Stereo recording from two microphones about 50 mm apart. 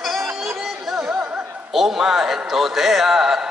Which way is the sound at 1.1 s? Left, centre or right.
Centre.